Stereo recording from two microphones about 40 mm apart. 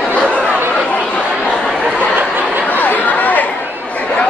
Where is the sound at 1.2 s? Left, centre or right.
Centre.